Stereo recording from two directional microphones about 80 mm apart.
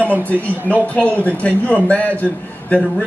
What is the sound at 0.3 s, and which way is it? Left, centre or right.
A man's voice, centre.